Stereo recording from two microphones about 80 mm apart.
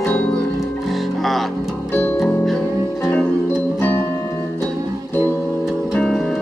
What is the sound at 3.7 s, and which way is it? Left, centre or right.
Music, left.